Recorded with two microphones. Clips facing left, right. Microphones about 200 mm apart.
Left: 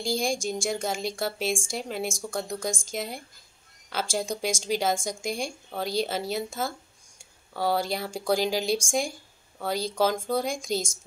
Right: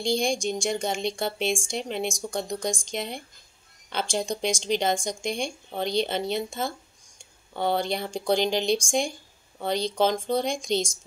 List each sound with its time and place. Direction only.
0.0 s a woman's voice: 5° left (ahead or behind)